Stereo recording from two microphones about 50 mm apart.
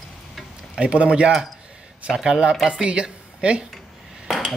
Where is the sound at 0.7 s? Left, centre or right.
Right.